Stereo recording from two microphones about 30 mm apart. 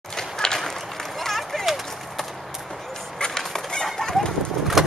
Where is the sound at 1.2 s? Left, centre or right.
Centre.